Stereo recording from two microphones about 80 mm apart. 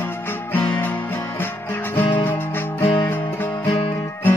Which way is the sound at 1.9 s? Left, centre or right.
Left.